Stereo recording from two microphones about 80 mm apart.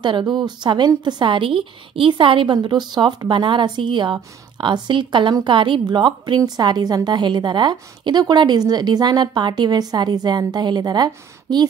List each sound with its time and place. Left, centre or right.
0.0 s a woman's voice: right